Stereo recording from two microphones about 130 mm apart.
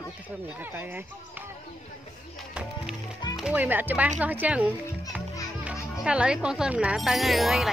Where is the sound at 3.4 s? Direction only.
10° right (ahead or behind).